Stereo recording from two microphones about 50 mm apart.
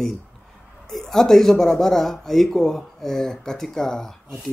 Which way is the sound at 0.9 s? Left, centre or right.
Centre.